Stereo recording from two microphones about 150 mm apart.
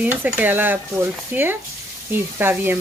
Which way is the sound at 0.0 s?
10° right (ahead or behind).